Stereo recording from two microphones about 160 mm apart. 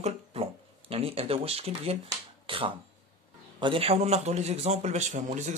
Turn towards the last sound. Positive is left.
turn(degrees=-50)  # may be behind; listen again after turning